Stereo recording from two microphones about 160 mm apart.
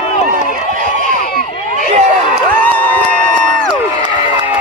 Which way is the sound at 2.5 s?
10° left (ahead or behind).